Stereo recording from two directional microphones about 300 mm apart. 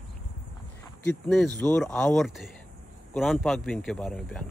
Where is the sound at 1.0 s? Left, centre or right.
Centre.